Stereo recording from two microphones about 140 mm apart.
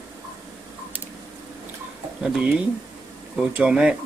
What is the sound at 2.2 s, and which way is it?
Speech, 5° right (ahead or behind).